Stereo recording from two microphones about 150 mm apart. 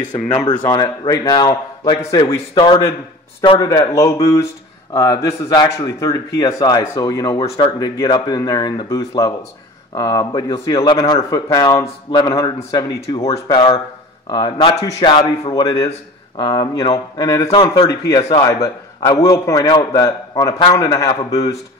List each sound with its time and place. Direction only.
0.5 s speech: 30° left (ahead or behind)
2.5 s a man's voice: 30° left (ahead or behind)
17.5 s a man's voice: 35° left (ahead or behind)
17.8 s speech: 25° left (ahead or behind)